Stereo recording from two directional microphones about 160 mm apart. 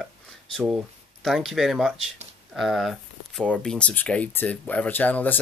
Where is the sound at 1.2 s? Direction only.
Centre (ahead or behind).